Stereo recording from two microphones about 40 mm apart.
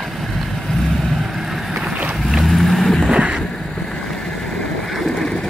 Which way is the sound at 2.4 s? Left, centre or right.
Centre.